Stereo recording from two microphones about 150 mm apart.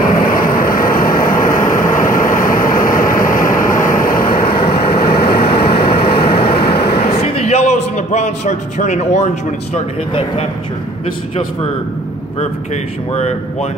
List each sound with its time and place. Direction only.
0.0 s vehicle: 70° left (ahead or behind)
4.6 s vehicle: 90° left
7.4 s a sound: 45° left (ahead or behind)
13.1 s speech: 45° left (ahead or behind)